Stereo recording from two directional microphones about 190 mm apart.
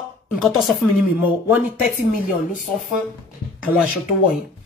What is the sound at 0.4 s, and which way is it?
Speech, centre (ahead or behind).